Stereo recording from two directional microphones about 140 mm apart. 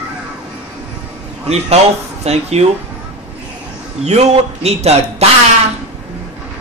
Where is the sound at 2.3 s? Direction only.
50° right (ahead or behind).